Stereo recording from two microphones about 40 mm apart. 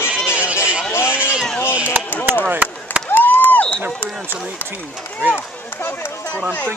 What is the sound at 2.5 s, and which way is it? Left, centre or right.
Chop, right.